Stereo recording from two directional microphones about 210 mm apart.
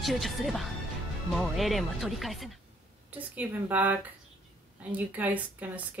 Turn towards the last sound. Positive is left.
turn(degrees=-5)  # may be behind; listen again after turning